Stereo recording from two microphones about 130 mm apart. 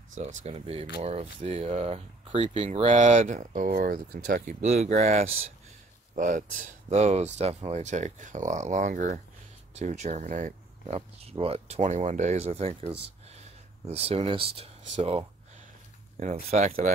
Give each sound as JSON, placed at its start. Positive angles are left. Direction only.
{"t": 0.1, "sound": "speech", "side_deg": -70}
{"t": 0.7, "sound": "speech", "side_deg": -50}
{"t": 4.5, "sound": "speech", "side_deg": -60}
{"t": 6.1, "sound": "speech", "side_deg": -85}
{"t": 9.8, "sound": "speech", "side_deg": -60}
{"t": 11.0, "sound": "speech", "side_deg": -45}
{"t": 16.2, "sound": "speech", "side_deg": -60}